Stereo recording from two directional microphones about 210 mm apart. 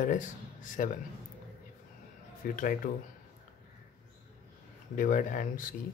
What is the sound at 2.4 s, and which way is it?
Speech, 40° left (ahead or behind).